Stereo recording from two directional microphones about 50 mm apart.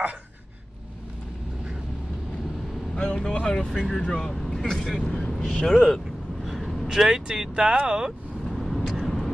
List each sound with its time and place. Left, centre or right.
3.0 s speech: centre
6.4 s vehicle: centre
6.9 s speech: centre
8.5 s vehicle: centre